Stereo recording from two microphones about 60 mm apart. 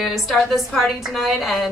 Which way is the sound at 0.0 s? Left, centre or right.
Centre.